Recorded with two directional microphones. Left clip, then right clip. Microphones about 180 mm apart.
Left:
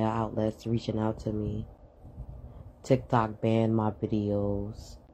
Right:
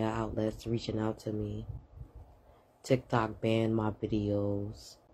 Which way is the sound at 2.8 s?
15° left (ahead or behind).